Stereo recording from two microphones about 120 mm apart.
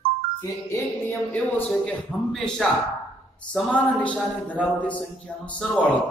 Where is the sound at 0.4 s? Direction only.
25° left (ahead or behind).